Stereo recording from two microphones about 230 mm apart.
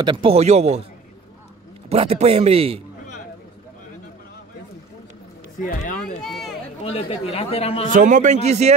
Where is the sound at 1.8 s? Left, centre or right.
Right.